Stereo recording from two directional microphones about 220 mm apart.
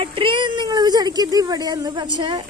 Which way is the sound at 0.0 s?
25° right (ahead or behind).